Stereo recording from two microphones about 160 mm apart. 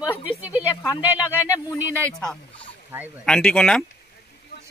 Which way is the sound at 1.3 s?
20° left (ahead or behind).